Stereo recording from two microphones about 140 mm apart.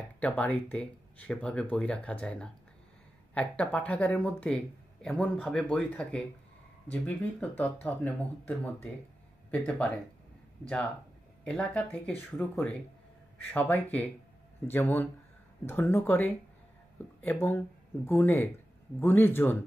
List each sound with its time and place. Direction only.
0.2 s speech: 10° left (ahead or behind)
11.4 s speech: 10° left (ahead or behind)